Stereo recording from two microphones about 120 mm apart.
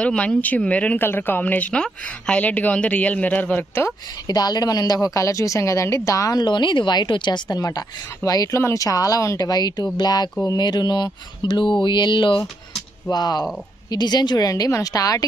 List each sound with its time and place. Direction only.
0.0 s speech: 10° left (ahead or behind)
4.3 s a woman's voice: 35° left (ahead or behind)